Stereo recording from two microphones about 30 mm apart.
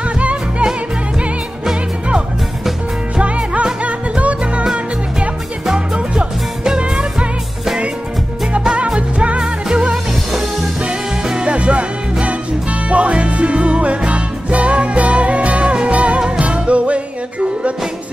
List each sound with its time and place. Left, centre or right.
0.2 s music: right
3.2 s music: right
6.8 s music: right
8.7 s music: right
11.4 s music: right